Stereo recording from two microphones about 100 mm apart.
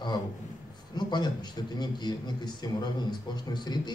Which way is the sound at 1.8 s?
45° left (ahead or behind).